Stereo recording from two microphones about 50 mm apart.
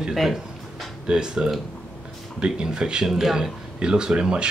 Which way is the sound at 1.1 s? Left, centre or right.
Centre.